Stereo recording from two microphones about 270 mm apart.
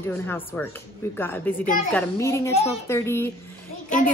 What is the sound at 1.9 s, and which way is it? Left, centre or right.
A woman's voice, centre.